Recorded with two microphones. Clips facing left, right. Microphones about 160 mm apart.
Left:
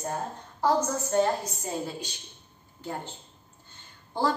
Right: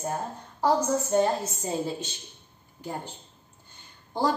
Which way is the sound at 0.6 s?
15° right (ahead or behind).